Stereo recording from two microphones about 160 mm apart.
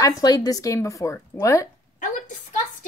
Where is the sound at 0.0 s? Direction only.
25° left (ahead or behind).